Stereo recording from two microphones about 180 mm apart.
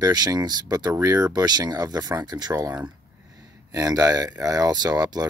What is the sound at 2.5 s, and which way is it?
Speech, 10° right (ahead or behind).